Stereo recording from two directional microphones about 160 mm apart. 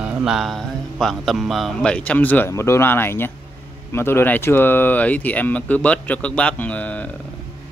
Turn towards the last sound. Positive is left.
turn(degrees=10)  # may be behind; listen again after turning